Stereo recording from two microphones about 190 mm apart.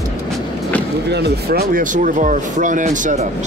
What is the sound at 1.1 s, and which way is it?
Speech, 55° right (ahead or behind).